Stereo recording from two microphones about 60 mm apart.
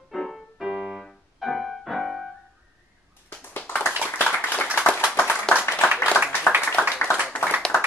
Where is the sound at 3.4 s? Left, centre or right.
Left.